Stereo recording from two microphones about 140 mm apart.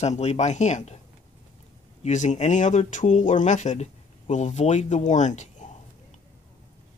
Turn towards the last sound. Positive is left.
turn(degrees=60)  # may be behind; listen again after turning